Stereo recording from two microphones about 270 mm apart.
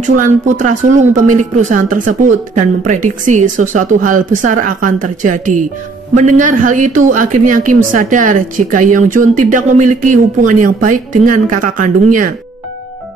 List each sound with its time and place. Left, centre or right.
0.2 s a woman's voice: right